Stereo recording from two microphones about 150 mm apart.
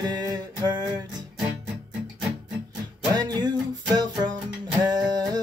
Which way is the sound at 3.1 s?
30° right (ahead or behind).